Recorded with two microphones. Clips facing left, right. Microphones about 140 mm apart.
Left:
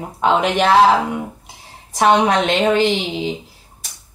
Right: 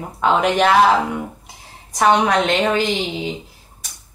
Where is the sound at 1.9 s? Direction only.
30° left (ahead or behind).